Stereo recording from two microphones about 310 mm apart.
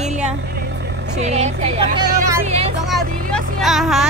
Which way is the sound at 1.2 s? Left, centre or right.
Right.